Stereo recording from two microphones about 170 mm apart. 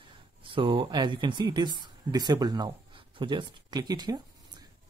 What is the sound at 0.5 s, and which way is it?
Speech, 30° right (ahead or behind).